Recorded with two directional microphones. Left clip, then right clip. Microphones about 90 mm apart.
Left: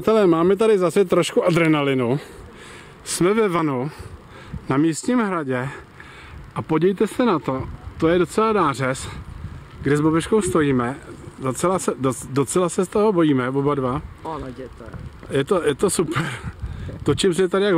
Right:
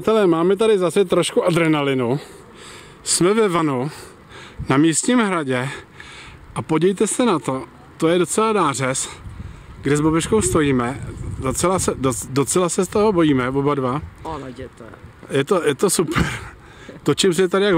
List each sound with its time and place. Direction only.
0.0 s speech: 5° right (ahead or behind)
3.1 s speech: 25° right (ahead or behind)
4.6 s speech: 40° right (ahead or behind)